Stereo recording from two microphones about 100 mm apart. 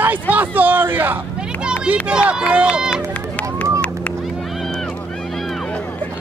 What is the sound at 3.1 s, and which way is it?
Run, 15° left (ahead or behind).